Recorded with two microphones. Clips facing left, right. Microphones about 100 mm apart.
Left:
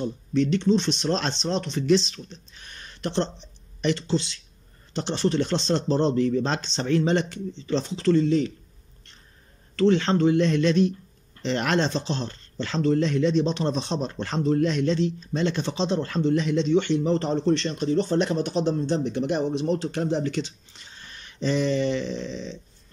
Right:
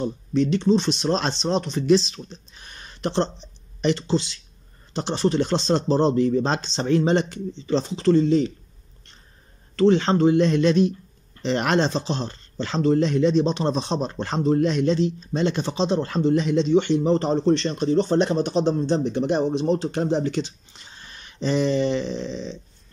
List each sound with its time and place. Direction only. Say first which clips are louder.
0.0 s speech: right 2 dB; 15° right (ahead or behind)
9.8 s speech: right 3 dB; 20° right (ahead or behind)